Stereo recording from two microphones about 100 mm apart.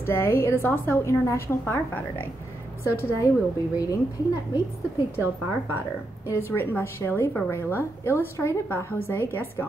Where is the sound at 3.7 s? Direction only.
35° left (ahead or behind).